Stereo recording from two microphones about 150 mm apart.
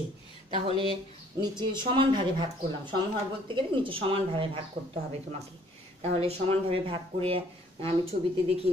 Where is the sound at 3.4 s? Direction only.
35° right (ahead or behind).